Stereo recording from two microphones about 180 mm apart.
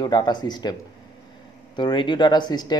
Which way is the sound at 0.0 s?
25° left (ahead or behind).